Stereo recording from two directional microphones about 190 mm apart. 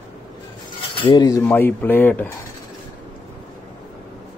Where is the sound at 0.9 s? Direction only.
25° left (ahead or behind).